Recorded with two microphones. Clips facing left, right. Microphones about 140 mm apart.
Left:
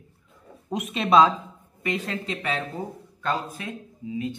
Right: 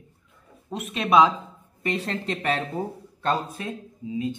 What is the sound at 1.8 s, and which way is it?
Speech, 35° right (ahead or behind).